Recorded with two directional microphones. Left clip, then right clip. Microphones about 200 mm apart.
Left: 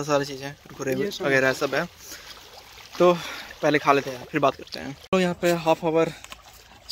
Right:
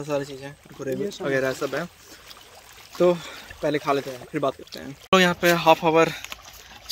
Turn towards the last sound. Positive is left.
turn(degrees=0)  # may be behind; listen again after turning